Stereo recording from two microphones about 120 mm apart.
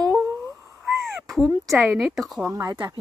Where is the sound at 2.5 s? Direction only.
30° right (ahead or behind).